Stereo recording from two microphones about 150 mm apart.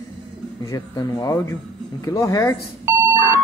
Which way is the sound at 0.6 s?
25° left (ahead or behind).